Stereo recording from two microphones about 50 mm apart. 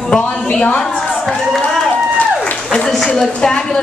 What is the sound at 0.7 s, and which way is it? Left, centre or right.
Speech, centre.